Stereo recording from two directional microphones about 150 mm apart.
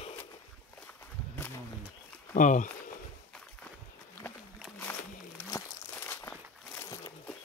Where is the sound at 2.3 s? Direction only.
60° left (ahead or behind).